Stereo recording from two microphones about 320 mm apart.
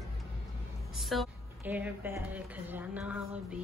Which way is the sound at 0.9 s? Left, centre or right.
Centre.